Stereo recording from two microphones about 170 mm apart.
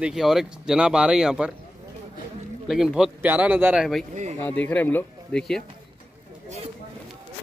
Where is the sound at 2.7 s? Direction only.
Centre (ahead or behind).